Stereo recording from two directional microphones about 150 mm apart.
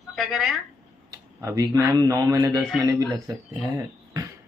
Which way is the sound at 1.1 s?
20° right (ahead or behind).